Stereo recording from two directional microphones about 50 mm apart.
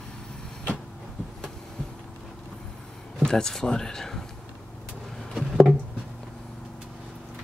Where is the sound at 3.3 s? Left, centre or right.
Centre.